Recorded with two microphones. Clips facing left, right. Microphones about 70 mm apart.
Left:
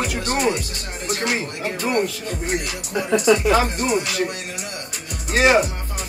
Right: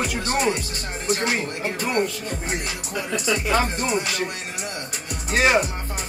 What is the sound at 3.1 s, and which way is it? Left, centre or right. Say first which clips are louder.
Speech: left 9 dB; left.